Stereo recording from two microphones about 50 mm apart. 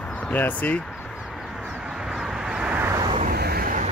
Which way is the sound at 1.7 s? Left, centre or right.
Centre.